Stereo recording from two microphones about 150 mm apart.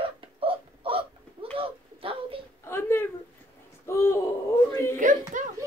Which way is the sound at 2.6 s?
15° left (ahead or behind).